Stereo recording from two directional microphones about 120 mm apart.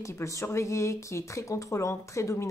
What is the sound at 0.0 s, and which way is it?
Speech, 25° left (ahead or behind).